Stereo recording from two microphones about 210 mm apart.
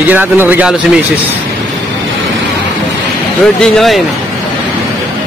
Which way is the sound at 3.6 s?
Centre (ahead or behind).